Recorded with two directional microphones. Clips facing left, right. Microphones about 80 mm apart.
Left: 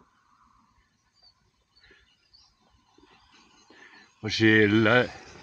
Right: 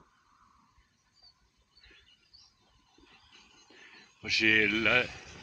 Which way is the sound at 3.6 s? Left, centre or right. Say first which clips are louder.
Left 4 dB; left.